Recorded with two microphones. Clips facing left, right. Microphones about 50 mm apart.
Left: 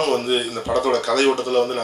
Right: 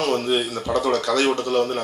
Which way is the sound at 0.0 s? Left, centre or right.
Centre.